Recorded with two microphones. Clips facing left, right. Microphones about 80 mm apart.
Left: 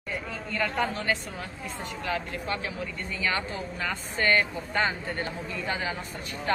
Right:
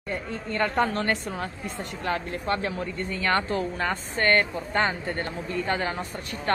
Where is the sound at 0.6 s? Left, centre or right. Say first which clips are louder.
Right 4 dB; right.